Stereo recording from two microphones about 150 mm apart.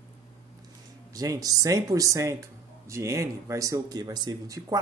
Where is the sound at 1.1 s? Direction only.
25° right (ahead or behind).